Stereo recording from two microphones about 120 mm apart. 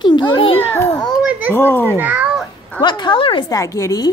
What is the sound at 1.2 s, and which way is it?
Children playing, 15° right (ahead or behind).